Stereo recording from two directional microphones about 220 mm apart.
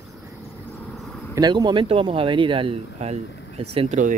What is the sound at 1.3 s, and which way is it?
Speech, 20° right (ahead or behind).